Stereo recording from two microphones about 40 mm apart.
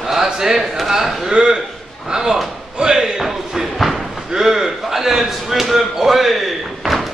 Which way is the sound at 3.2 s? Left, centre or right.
Centre.